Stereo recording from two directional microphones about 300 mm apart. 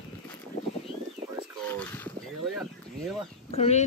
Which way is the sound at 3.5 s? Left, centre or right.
Left.